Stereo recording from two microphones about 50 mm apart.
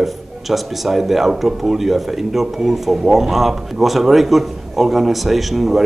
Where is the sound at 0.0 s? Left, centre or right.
Centre.